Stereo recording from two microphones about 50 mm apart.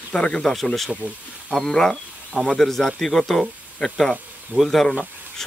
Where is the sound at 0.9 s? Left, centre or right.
Right.